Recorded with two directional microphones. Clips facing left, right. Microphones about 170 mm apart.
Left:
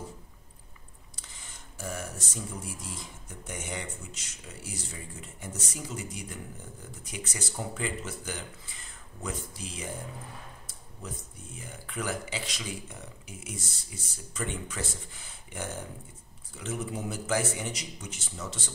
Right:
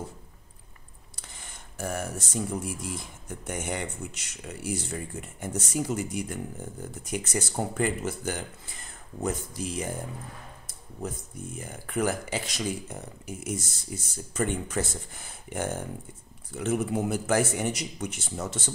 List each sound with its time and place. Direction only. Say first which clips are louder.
1.3 s speech: right 4 dB; 55° right (ahead or behind)
11.0 s speech: right 7 dB; 45° right (ahead or behind)